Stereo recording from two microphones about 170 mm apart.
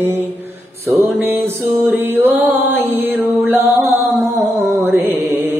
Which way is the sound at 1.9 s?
10° right (ahead or behind).